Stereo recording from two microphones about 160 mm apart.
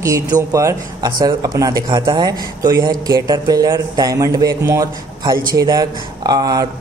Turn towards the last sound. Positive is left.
turn(degrees=-25)  # may be behind; listen again after turning